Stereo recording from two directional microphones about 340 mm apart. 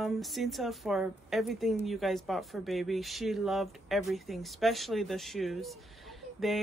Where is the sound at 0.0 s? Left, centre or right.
Centre.